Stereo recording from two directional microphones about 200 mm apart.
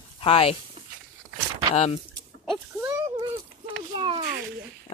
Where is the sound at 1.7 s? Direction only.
30° left (ahead or behind).